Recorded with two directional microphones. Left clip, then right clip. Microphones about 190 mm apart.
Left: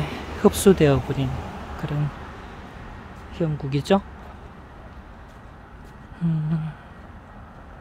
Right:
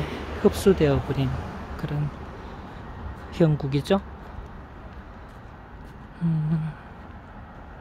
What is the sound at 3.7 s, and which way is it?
Speech, 10° left (ahead or behind).